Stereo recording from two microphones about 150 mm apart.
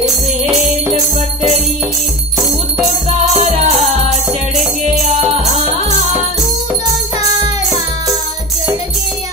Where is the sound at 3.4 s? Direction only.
50° right (ahead or behind).